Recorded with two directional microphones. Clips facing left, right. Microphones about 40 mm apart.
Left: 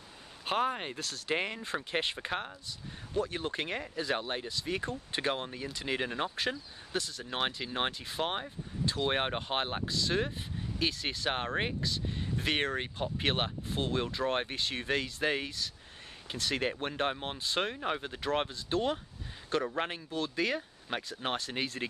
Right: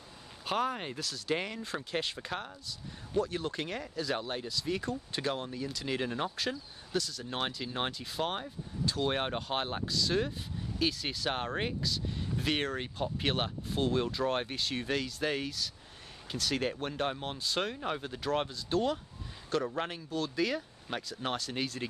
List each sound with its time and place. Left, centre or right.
0.5 s speech: left